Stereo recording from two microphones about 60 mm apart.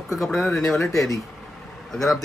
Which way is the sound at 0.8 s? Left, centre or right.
Left.